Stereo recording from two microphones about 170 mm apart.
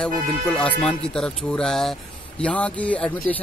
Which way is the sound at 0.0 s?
5° left (ahead or behind).